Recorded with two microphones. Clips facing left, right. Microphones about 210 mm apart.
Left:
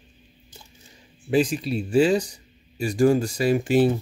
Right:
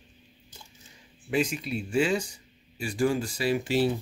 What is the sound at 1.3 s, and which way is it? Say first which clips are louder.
Speech: left 6 dB; 35° left (ahead or behind).